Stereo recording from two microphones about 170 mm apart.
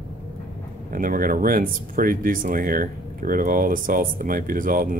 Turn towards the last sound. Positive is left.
turn(degrees=-55)  # may be behind; listen again after turning